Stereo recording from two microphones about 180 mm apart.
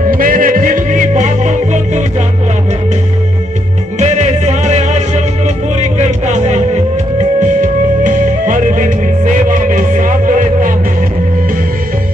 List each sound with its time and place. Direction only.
0.1 s music: 50° right (ahead or behind)
4.0 s music: 40° right (ahead or behind)